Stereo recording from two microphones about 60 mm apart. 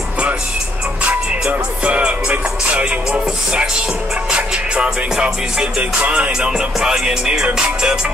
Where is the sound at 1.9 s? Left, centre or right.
Right.